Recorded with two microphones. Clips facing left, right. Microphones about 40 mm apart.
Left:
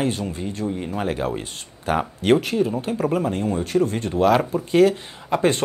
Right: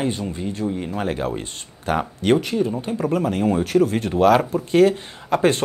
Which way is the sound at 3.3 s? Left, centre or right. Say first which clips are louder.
Right 3 dB; centre.